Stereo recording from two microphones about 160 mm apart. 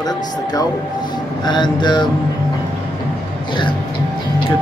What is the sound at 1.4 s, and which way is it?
Speech, 25° left (ahead or behind).